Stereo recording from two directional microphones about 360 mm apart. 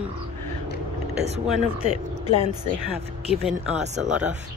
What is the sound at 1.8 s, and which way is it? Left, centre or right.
Speech, centre.